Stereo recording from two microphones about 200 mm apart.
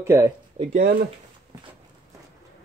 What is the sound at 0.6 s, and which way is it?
Speech, 20° right (ahead or behind).